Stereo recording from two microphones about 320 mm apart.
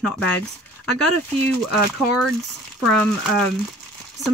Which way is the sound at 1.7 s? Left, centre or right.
Centre.